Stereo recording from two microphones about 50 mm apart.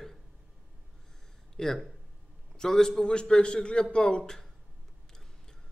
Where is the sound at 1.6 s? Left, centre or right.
Centre.